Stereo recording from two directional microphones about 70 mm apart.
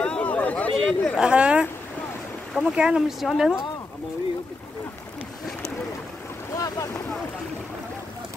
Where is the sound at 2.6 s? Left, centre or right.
Centre.